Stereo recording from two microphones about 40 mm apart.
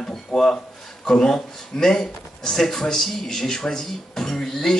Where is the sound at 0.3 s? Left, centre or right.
Centre.